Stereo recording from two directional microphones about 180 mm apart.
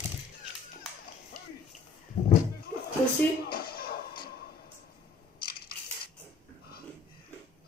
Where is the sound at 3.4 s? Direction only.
60° left (ahead or behind).